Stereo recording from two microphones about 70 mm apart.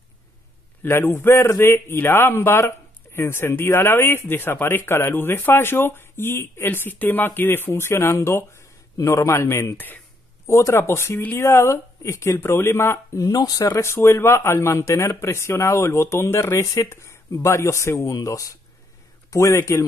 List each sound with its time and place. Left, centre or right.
0.8 s speech: left
18.1 s a man's voice: left